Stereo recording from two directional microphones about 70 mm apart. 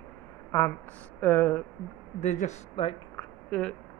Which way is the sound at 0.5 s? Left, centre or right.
Left.